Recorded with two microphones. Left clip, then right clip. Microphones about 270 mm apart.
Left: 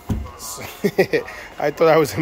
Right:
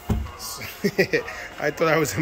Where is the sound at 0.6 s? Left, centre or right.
Centre.